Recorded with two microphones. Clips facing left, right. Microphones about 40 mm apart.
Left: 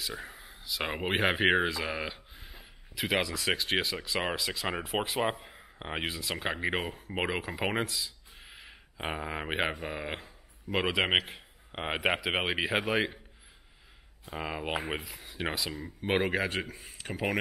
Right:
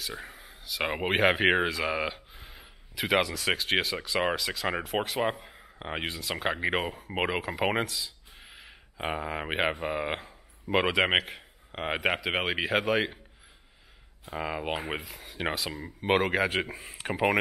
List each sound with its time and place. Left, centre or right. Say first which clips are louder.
0.0 s speech: even; centre
7.8 s a sound: right 1 dB; centre
9.8 s a man's voice: right 6 dB; centre
14.2 s speech: right 3 dB; centre
15.7 s speech: right 1 dB; right
16.1 s speech: right 3 dB; centre
16.5 s speech: right 5 dB; right